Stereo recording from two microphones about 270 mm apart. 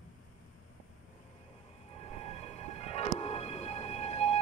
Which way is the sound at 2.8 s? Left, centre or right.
Left.